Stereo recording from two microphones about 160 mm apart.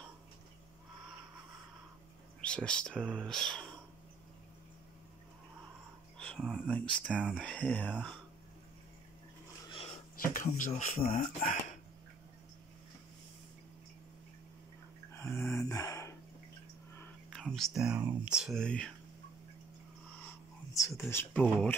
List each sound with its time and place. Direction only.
2.4 s speech: 5° left (ahead or behind)
6.1 s a sound: 5° left (ahead or behind)
6.7 s speech: 5° left (ahead or behind)
9.7 s a sound: 35° left (ahead or behind)
10.2 s speech: 55° left (ahead or behind)
10.7 s speech: 45° left (ahead or behind)
15.1 s a sound: 15° left (ahead or behind)
17.3 s whispering: 5° left (ahead or behind)
18.0 s speech: 5° right (ahead or behind)
20.2 s speech: 20° left (ahead or behind)